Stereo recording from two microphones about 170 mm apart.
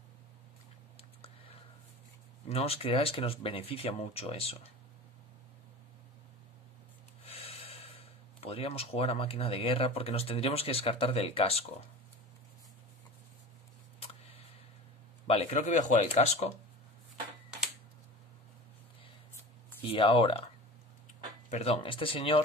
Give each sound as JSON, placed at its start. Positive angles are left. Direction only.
{"t": 2.5, "sound": "speech", "side_deg": 35}
{"t": 7.2, "sound": "snort", "side_deg": 35}
{"t": 8.4, "sound": "speech", "side_deg": 35}
{"t": 15.2, "sound": "speech", "side_deg": 40}
{"t": 19.8, "sound": "speech", "side_deg": 30}
{"t": 21.5, "sound": "speech", "side_deg": 40}